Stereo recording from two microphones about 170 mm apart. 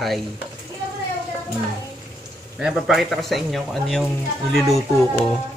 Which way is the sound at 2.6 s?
Centre (ahead or behind).